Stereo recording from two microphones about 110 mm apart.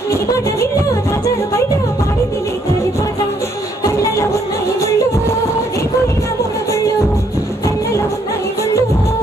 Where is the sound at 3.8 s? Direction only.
25° left (ahead or behind).